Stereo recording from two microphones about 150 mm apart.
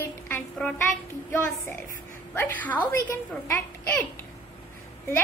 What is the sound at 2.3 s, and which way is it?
A woman's voice, 15° left (ahead or behind).